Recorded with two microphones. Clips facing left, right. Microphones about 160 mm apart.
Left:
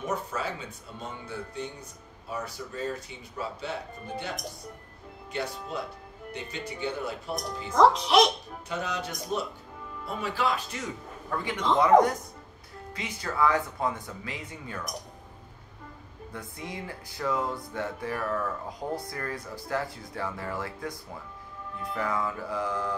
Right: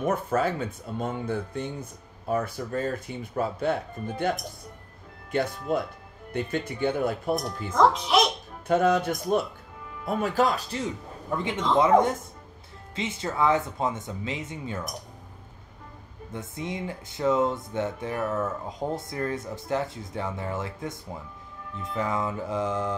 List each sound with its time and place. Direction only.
0.0 s speech: 50° right (ahead or behind)
7.7 s a child's voice: centre (ahead or behind)
8.6 s speech: 50° right (ahead or behind); by 10.9 s 35° right (ahead or behind)
11.2 s speech: 20° right (ahead or behind)
16.3 s speech: 20° right (ahead or behind)